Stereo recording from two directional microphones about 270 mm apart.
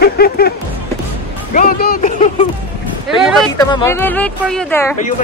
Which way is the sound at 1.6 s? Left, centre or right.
Left.